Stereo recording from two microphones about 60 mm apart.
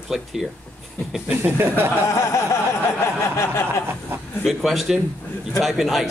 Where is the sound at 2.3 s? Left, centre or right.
Left.